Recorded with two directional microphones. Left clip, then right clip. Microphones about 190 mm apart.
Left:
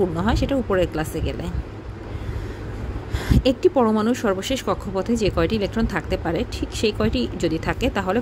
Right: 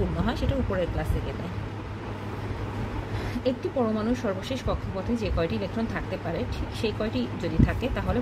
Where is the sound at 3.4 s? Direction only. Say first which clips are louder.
Left 9 dB; 55° left (ahead or behind).